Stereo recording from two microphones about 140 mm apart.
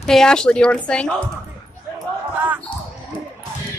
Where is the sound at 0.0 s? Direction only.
5° left (ahead or behind).